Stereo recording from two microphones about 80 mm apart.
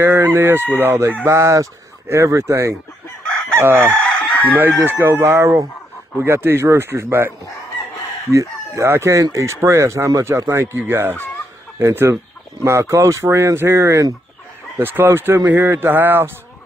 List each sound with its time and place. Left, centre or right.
0.0 s speech: right
4.0 s chicken: centre
4.6 s speech: right
5.2 s speech: right
8.3 s speech: right